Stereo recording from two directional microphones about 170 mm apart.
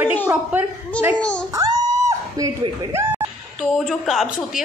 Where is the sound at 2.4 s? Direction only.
20° right (ahead or behind).